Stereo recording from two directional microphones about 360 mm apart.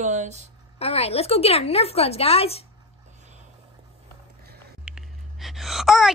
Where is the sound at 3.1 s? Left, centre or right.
Centre.